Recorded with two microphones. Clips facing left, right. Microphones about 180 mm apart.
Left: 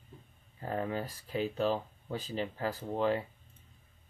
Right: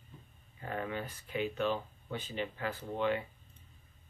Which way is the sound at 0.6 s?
35° left (ahead or behind).